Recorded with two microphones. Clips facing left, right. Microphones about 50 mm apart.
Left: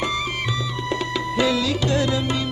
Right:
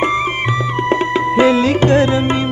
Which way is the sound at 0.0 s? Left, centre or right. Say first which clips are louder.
Right 8 dB; right.